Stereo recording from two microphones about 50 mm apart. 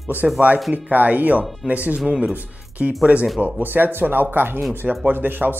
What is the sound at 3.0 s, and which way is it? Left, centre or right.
Speech, right.